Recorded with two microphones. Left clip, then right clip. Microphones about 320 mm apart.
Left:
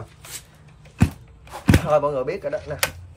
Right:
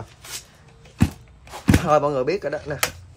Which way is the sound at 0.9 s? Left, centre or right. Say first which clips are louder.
Even; centre.